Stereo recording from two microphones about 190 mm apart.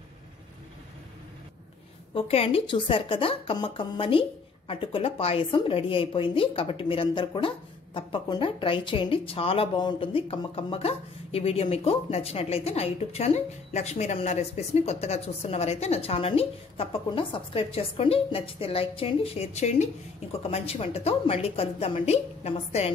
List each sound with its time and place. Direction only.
2.1 s a woman's voice: 30° left (ahead or behind)